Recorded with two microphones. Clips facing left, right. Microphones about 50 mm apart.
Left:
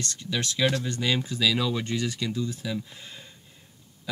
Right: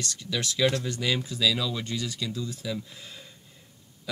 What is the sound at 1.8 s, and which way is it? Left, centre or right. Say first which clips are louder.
Speech: left 3 dB; left.